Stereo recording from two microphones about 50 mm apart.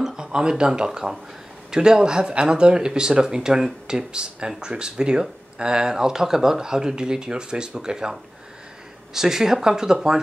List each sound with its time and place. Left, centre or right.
0.0 s speech: centre